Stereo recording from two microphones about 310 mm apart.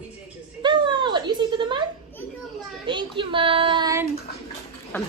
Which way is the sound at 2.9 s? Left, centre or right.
Centre.